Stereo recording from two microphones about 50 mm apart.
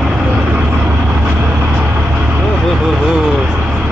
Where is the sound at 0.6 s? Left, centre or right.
Right.